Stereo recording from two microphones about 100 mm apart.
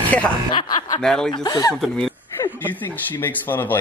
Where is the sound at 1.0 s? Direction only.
5° left (ahead or behind).